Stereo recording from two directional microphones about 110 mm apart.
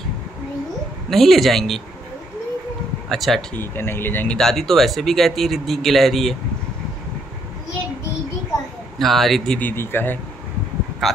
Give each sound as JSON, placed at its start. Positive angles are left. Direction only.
{"t": 1.1, "sound": "speech", "side_deg": 0}
{"t": 3.1, "sound": "speech", "side_deg": 0}
{"t": 3.5, "sound": "speech", "side_deg": 20}
{"t": 4.4, "sound": "speech", "side_deg": 5}
{"t": 8.9, "sound": "speech", "side_deg": 0}
{"t": 9.6, "sound": "speech", "side_deg": 20}
{"t": 11.0, "sound": "speech", "side_deg": 0}